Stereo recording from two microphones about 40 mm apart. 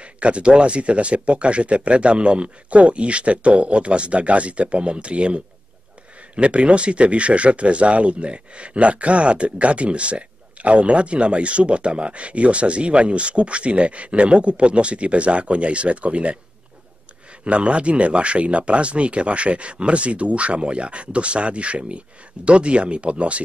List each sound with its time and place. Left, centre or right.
0.0 s speech: right
17.5 s speech: right